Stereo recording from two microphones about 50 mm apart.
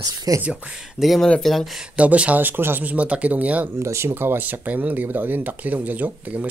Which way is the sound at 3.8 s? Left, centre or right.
Right.